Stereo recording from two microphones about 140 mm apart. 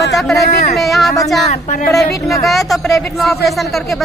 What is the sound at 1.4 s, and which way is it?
Speech, 50° left (ahead or behind).